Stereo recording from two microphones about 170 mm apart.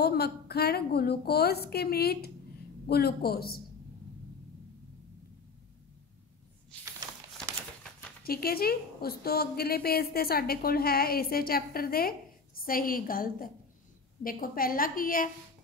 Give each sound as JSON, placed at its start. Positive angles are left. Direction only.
{"t": 0.0, "sound": "a woman's voice", "side_deg": 70}
{"t": 8.2, "sound": "a woman's voice", "side_deg": 65}